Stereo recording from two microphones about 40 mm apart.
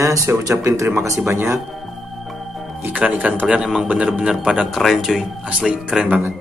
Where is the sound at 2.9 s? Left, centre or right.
Right.